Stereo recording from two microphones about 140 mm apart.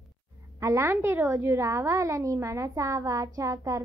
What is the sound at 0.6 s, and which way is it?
A child's voice, 20° right (ahead or behind).